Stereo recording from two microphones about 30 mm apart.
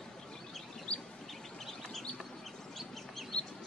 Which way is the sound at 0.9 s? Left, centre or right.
Left.